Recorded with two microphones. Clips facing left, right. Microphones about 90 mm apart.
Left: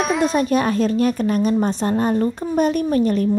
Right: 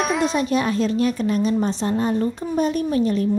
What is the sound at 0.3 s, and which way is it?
A woman's voice, 45° left (ahead or behind).